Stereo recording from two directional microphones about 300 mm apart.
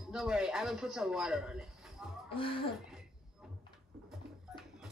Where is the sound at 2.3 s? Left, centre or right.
Centre.